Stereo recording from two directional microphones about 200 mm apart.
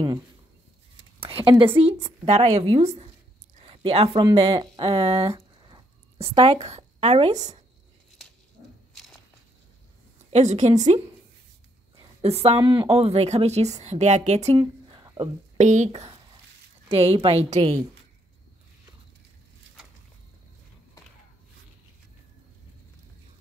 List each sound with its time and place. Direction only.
1.2 s a woman's voice: 25° right (ahead or behind)
5.3 s a sound: 20° right (ahead or behind)
10.3 s a woman's voice: 35° right (ahead or behind)
12.2 s a woman's voice: 30° right (ahead or behind)
15.5 s a woman's voice: 35° right (ahead or behind)